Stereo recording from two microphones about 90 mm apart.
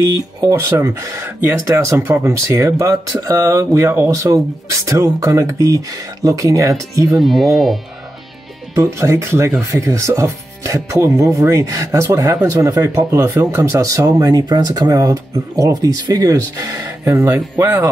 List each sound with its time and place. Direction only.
0.0 s speech: 40° right (ahead or behind)
1.2 s speech: 25° right (ahead or behind)
1.9 s speech: 35° right (ahead or behind)
7.2 s speech: centre (ahead or behind)
8.7 s speech: 30° right (ahead or behind)